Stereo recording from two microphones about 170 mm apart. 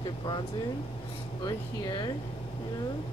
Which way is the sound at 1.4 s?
25° left (ahead or behind).